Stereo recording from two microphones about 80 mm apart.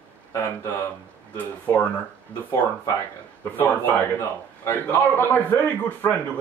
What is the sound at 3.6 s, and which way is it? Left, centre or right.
A man's voice, left.